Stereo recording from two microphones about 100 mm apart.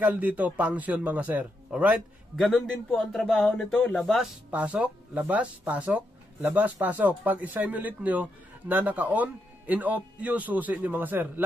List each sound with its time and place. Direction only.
0.0 s speech: 15° right (ahead or behind)
2.3 s speech: centre (ahead or behind)
4.5 s speech: 15° right (ahead or behind)